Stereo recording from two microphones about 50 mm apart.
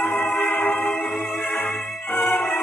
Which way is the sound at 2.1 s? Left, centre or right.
Left.